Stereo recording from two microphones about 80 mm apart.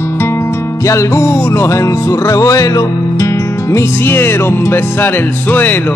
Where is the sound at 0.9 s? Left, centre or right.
Left.